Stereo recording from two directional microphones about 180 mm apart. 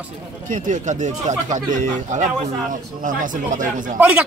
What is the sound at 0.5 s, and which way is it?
Speech, 45° right (ahead or behind).